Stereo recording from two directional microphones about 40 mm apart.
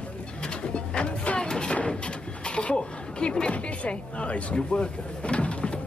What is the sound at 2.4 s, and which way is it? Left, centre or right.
A woman's voice, left.